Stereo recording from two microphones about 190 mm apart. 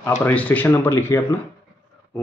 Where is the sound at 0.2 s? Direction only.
10° left (ahead or behind).